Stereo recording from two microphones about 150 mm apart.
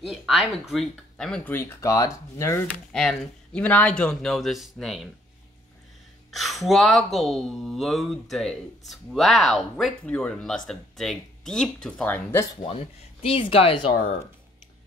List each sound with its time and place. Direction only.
0.0 s speech: 5° right (ahead or behind)
1.5 s speech: 15° left (ahead or behind)
2.9 s speech: 5° left (ahead or behind)
6.3 s speech: centre (ahead or behind)
12.6 s speech: 40° left (ahead or behind)